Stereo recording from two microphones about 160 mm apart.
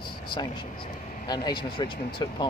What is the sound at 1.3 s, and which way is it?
Speech, 30° left (ahead or behind).